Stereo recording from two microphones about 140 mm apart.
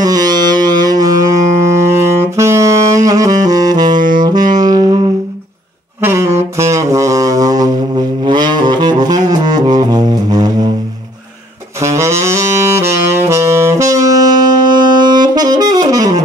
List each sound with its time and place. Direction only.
0.0 s music: 30° right (ahead or behind)
2.3 s saxophone: 20° right (ahead or behind)
5.9 s saxophone: 20° right (ahead or behind)
8.3 s music: 30° right (ahead or behind)
11.8 s saxophone: 20° right (ahead or behind)